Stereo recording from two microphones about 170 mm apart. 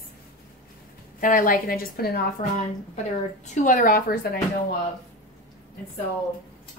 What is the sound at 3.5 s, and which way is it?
Speech, 45° left (ahead or behind).